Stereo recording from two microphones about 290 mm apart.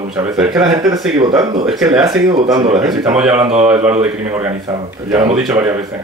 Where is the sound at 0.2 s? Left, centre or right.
Centre.